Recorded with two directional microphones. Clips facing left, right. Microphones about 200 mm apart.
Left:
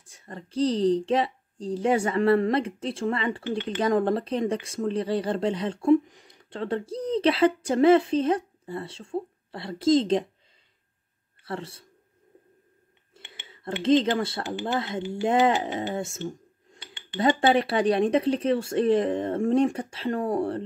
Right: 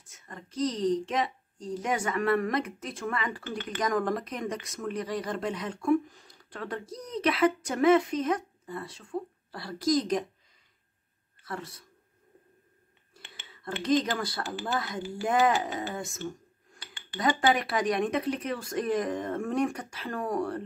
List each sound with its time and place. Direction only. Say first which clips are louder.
0.0 s speech: left 5 dB; 30° left (ahead or behind)
11.4 s speech: left 4 dB; 30° left (ahead or behind)
13.1 s speech: left 3 dB; 25° left (ahead or behind)